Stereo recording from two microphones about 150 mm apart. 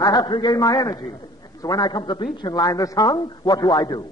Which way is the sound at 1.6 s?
25° left (ahead or behind).